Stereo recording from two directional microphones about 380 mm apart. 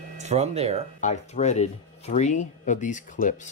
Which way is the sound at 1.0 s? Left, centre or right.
Centre.